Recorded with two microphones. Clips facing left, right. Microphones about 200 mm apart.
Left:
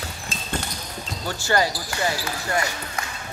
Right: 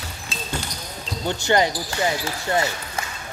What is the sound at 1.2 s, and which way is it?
Speech, 20° right (ahead or behind).